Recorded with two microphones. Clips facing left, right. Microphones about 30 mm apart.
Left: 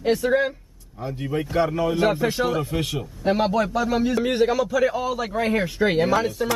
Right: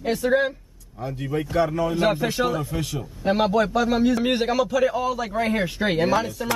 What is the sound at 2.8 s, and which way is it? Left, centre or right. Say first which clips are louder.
Speech: left 2 dB; left.